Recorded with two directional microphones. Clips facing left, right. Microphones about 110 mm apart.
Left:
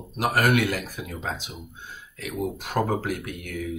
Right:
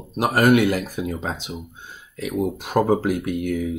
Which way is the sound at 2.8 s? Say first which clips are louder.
Right 6 dB; 25° right (ahead or behind).